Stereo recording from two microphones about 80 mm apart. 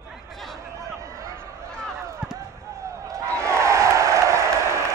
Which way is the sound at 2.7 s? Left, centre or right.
Right.